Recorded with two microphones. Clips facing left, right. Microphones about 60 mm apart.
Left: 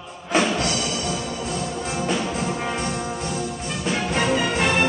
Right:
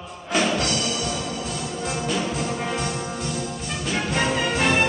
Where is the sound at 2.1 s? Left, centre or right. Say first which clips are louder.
Left 2 dB; centre.